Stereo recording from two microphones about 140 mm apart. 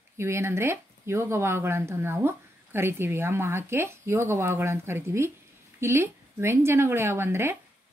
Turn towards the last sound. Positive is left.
turn(degrees=-15)  # may be behind; listen again after turning